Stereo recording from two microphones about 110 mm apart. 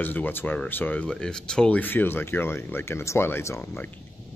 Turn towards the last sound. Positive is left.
turn(degrees=20)  # may be behind; listen again after turning